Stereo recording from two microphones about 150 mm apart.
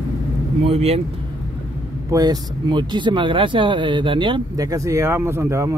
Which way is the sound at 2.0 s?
25° right (ahead or behind).